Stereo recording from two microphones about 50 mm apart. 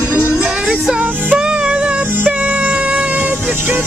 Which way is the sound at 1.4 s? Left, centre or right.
Centre.